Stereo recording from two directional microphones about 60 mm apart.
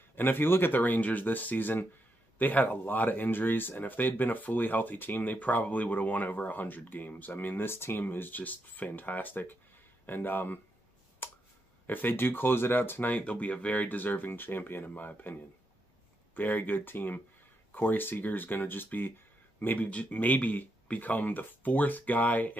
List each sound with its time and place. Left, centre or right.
0.1 s speech: left
11.2 s finger snapping: left
11.9 s speech: left
16.3 s speech: left